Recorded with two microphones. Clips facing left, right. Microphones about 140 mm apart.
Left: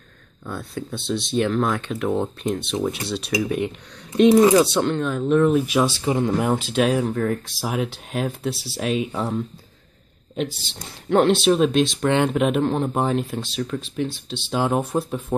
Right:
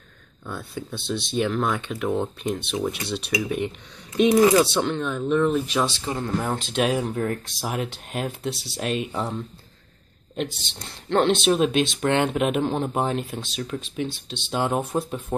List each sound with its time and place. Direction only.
0.5 s speech: centre (ahead or behind)